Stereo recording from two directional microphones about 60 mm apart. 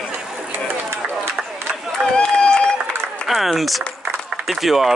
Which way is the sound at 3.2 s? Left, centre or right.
Centre.